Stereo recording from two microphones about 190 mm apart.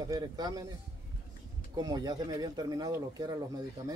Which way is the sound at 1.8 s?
20° right (ahead or behind).